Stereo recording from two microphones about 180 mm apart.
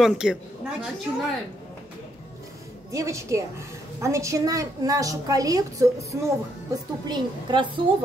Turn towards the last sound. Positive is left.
turn(degrees=-25)  # may be behind; listen again after turning